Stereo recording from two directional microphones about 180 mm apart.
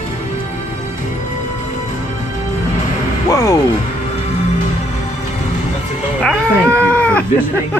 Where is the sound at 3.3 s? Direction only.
20° left (ahead or behind).